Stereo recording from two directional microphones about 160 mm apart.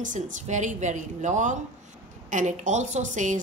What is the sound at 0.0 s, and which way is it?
Speech, 50° right (ahead or behind).